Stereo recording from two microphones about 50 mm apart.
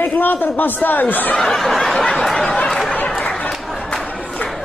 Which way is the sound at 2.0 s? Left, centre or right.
Centre.